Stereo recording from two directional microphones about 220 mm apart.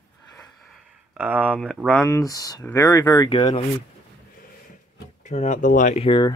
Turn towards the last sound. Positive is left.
turn(degrees=20)  # may be behind; listen again after turning